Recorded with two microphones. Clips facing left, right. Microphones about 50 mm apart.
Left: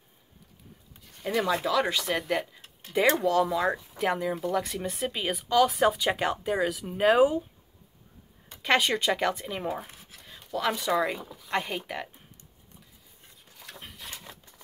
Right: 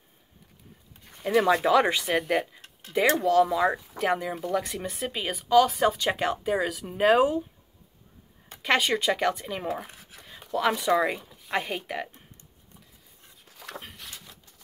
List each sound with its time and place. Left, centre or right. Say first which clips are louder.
1.2 s speech: right 5 dB; centre
1.5 s speech: right 7 dB; right
1.8 s speech: right 3 dB; centre
8.6 s speech: right 1 dB; centre